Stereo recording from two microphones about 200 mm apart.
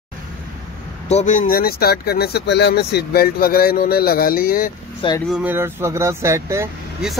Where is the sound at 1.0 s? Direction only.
35° left (ahead or behind).